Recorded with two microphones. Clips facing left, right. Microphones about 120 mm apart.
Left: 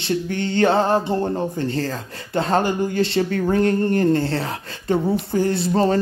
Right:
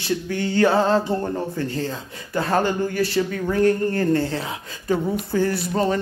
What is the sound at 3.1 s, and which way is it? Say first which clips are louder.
Speech: left 2 dB; 55° left (ahead or behind).